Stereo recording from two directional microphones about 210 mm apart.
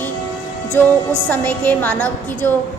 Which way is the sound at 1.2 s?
10° left (ahead or behind).